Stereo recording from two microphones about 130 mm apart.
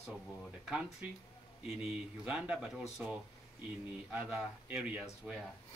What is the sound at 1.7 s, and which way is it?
A man's voice, 5° right (ahead or behind).